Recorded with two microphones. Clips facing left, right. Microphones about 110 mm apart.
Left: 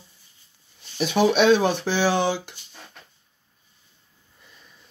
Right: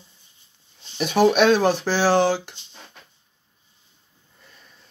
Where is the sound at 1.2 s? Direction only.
55° right (ahead or behind).